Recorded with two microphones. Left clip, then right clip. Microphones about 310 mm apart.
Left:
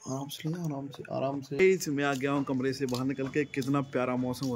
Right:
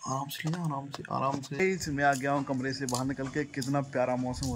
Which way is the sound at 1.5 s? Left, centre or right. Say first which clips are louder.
Left 5 dB; centre.